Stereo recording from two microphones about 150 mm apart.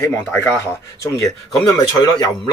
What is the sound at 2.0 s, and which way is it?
Speech, 25° left (ahead or behind).